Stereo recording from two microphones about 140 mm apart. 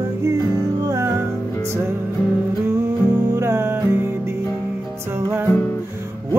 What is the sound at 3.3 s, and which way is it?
Music, 20° right (ahead or behind).